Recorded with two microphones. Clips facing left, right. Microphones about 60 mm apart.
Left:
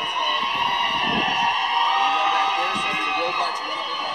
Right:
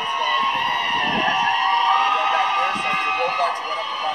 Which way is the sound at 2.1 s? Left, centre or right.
Right.